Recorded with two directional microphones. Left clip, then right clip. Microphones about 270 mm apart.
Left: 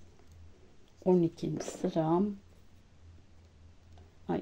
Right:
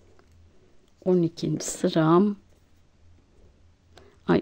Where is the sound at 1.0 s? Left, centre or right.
Centre.